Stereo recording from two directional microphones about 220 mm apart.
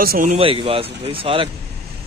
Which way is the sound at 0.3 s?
25° right (ahead or behind).